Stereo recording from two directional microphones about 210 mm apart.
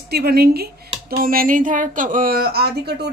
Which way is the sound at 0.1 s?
50° right (ahead or behind).